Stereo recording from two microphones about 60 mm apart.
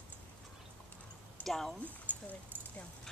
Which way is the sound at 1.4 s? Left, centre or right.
Centre.